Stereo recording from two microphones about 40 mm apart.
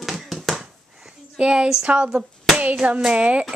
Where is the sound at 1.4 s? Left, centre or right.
Right.